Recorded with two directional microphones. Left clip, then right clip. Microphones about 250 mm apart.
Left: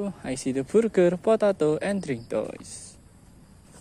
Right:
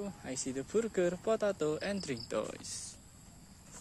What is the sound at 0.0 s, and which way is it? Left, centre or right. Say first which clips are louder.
Speech: left 10 dB; left.